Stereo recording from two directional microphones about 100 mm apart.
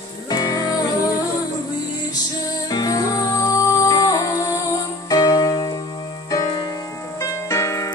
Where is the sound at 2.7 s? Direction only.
40° left (ahead or behind).